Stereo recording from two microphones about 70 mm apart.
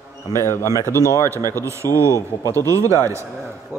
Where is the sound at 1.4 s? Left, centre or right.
Right.